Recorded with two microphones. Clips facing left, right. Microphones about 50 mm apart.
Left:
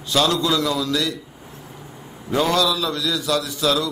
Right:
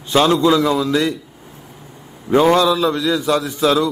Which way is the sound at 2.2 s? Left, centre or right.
Right.